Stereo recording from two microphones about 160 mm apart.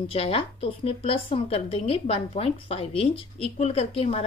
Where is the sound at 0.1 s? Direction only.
35° left (ahead or behind).